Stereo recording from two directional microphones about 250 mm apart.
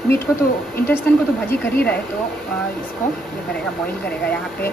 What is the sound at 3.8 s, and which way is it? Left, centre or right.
Speech, centre.